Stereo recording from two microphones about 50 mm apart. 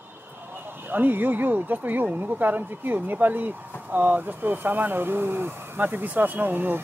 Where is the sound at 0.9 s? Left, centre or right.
Right.